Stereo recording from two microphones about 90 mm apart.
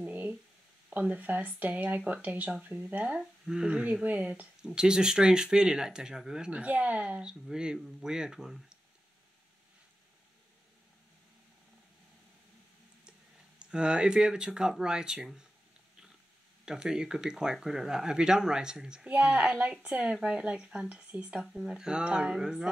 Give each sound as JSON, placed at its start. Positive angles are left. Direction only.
{"t": 0.0, "sound": "a sound", "side_deg": -20}
{"t": 0.8, "sound": "speech", "side_deg": -15}
{"t": 13.6, "sound": "speech", "side_deg": -10}
{"t": 16.6, "sound": "speech", "side_deg": -5}